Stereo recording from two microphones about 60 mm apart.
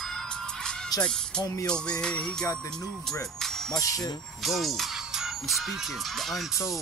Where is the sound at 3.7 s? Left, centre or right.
Left.